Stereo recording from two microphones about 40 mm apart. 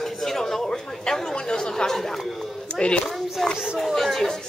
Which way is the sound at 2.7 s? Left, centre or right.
Left.